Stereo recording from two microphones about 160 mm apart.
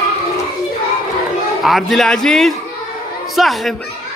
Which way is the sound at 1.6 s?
Centre (ahead or behind).